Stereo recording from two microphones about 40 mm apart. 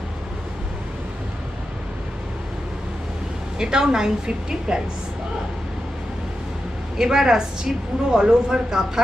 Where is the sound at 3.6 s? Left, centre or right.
Centre.